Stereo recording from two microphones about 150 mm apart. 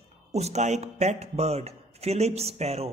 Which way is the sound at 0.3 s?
45° right (ahead or behind).